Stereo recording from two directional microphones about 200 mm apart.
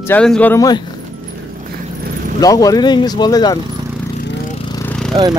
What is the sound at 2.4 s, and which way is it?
Speech, 20° left (ahead or behind).